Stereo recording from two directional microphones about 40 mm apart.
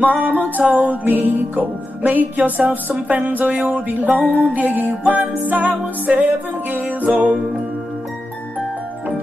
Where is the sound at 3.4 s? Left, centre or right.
Right.